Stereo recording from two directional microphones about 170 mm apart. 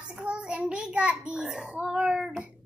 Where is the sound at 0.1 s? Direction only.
5° right (ahead or behind).